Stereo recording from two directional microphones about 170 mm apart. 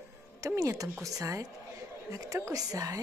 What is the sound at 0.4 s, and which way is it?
Speech, 15° right (ahead or behind).